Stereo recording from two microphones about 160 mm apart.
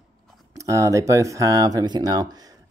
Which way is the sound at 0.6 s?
20° right (ahead or behind).